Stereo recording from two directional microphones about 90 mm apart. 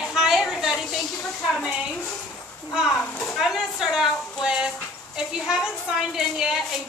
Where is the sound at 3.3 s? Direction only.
5° right (ahead or behind).